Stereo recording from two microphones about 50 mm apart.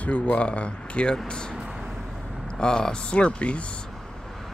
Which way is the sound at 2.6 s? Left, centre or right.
Centre.